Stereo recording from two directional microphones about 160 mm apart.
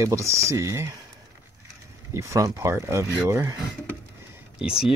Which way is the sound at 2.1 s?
20° right (ahead or behind).